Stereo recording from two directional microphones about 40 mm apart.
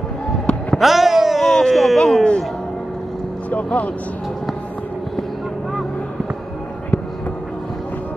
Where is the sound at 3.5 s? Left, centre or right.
Left.